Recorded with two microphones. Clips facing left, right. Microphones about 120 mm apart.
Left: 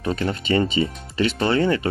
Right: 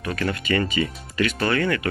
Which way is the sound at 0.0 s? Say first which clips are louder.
Left 2 dB; 25° left (ahead or behind).